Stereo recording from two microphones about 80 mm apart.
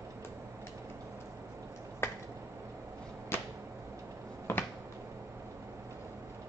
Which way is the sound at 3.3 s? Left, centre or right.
Left.